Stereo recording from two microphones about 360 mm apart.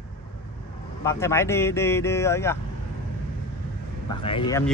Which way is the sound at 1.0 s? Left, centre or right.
Centre.